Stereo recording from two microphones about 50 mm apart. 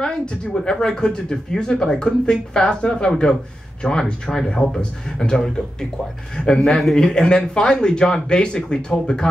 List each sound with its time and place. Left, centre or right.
0.0 s speech: centre